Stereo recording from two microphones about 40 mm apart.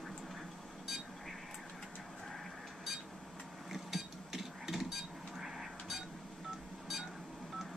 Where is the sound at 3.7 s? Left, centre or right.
Centre.